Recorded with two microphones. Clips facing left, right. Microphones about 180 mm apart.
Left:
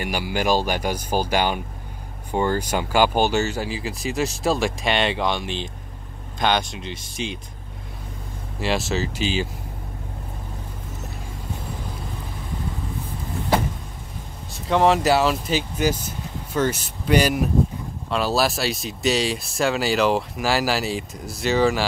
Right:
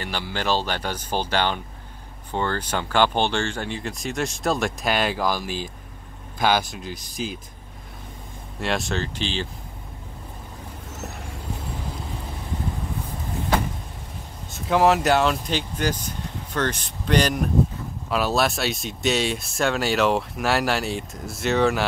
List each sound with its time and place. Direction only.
0.0 s speech: 10° left (ahead or behind)
8.5 s speech: centre (ahead or behind)
14.5 s speech: centre (ahead or behind)